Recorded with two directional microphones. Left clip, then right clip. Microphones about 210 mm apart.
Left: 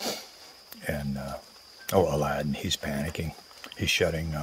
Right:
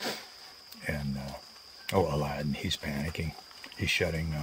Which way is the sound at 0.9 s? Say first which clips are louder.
Left 3 dB; 5° right (ahead or behind).